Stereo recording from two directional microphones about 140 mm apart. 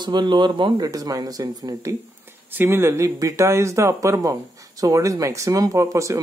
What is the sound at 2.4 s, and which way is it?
Speech, 15° right (ahead or behind).